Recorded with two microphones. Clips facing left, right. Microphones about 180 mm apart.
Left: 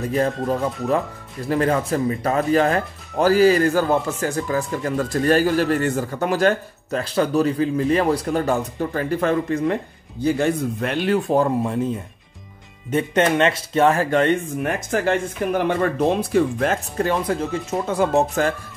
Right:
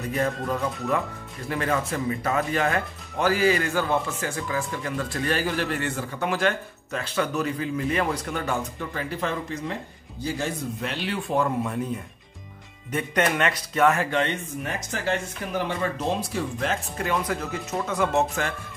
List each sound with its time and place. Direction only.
0.1 s a man's voice: 30° left (ahead or behind)
12.9 s speech: 25° left (ahead or behind)
14.1 s speech: 50° left (ahead or behind)
17.0 s speech: 30° left (ahead or behind)